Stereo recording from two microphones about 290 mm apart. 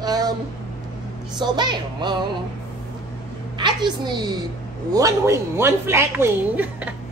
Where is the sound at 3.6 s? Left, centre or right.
Centre.